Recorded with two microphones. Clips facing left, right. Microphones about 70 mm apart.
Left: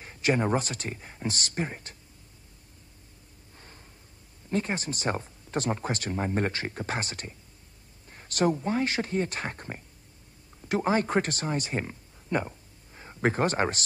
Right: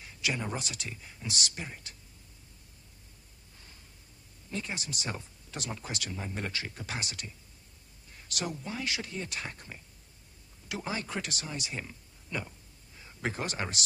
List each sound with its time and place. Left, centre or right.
0.0 s speech: left
3.5 s a sound: left
4.5 s speech: left